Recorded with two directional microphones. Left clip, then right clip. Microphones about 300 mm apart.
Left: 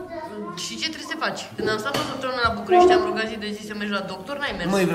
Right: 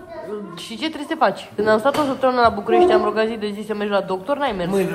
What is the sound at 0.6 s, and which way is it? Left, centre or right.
A woman's voice, centre.